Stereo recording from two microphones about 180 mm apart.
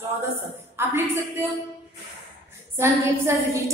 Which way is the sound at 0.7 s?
15° right (ahead or behind).